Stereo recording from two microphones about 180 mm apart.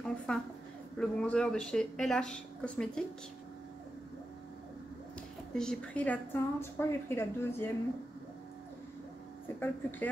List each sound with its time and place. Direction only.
0.3 s a woman's voice: 5° left (ahead or behind)
5.5 s a woman's voice: 5° left (ahead or behind)
9.6 s a woman's voice: 10° left (ahead or behind)